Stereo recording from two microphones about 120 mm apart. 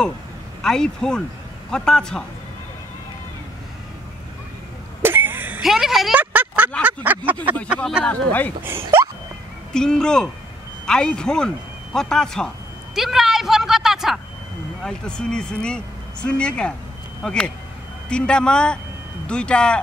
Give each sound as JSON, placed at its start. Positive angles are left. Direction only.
{"t": 0.6, "sound": "speech", "side_deg": 5}
{"t": 5.0, "sound": "throat clearing", "side_deg": -15}
{"t": 5.6, "sound": "a sound", "side_deg": 0}
{"t": 6.1, "sound": "a sound", "side_deg": -15}
{"t": 8.0, "sound": "speech", "side_deg": 15}
{"t": 8.6, "sound": "speech", "side_deg": -20}
{"t": 9.8, "sound": "speech", "side_deg": 5}
{"t": 12.9, "sound": "a sound", "side_deg": -5}
{"t": 14.8, "sound": "speech", "side_deg": 5}